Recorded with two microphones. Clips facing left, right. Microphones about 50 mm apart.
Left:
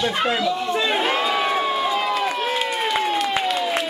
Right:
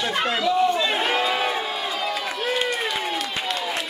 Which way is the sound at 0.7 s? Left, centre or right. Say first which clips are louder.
Left 2 dB; centre.